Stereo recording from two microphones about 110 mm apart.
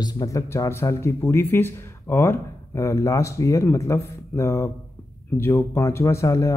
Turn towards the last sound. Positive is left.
turn(degrees=30)  # may be behind; listen again after turning